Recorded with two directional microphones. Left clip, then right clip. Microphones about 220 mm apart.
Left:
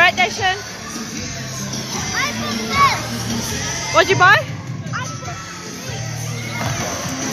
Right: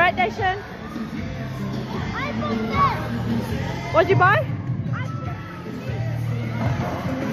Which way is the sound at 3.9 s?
15° left (ahead or behind).